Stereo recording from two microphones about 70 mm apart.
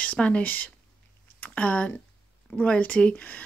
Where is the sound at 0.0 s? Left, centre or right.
Centre.